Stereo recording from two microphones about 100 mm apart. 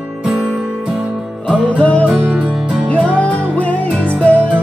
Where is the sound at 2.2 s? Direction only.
15° right (ahead or behind).